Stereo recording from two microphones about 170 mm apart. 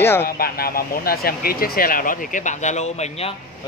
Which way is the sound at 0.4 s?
60° left (ahead or behind).